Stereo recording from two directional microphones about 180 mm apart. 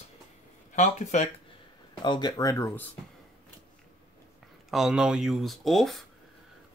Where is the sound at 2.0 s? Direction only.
25° left (ahead or behind).